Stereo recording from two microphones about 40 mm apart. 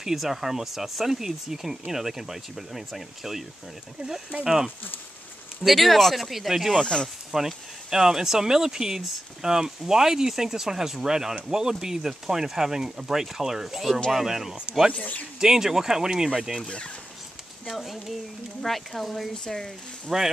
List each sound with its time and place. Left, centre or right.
0.0 s speech: centre
4.5 s speech: centre
5.6 s speech: centre
6.7 s speech: left
7.3 s speech: centre
15.0 s speech: left
15.4 s speech: centre
16.6 s speech: left
17.7 s speech: centre
20.1 s speech: centre